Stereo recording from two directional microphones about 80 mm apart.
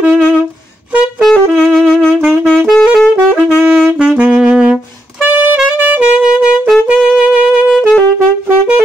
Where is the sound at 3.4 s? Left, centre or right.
Left.